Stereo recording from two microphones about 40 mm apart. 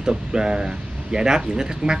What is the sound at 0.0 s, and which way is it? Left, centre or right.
Speech, centre.